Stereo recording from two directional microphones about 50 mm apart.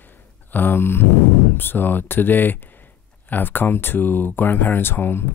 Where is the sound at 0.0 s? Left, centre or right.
Left.